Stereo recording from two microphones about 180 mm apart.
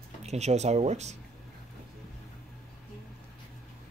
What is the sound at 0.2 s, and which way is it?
Speech, 40° right (ahead or behind).